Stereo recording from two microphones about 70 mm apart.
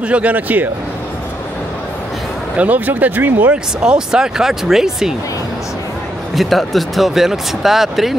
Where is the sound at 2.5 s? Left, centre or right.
Right.